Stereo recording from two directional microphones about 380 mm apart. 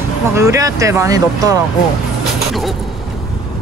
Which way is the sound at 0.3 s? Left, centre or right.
Centre.